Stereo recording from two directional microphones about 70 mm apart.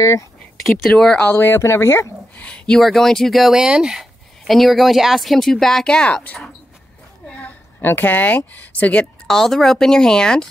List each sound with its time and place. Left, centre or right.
0.0 s speech: left
0.7 s speech: centre
1.2 s speech: left
2.3 s speech: centre
7.2 s a woman's voice: left
9.3 s speech: centre